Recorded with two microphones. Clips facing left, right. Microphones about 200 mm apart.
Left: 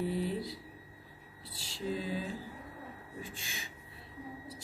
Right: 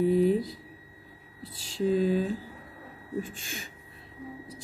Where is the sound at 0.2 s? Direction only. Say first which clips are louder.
Right 11 dB; 50° right (ahead or behind).